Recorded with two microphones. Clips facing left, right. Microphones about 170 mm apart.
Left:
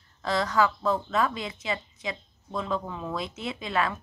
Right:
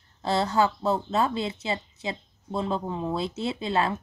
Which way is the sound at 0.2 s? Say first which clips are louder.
Right 1 dB; 30° right (ahead or behind).